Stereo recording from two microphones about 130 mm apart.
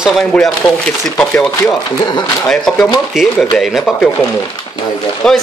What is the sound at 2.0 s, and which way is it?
Speech, 35° left (ahead or behind).